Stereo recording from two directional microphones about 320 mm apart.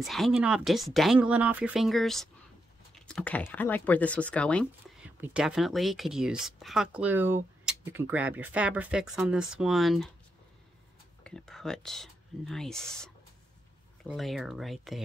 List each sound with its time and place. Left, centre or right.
0.0 s speech: centre
11.2 s speech: centre